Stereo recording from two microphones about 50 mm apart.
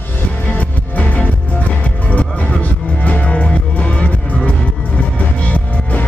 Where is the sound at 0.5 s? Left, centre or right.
Left.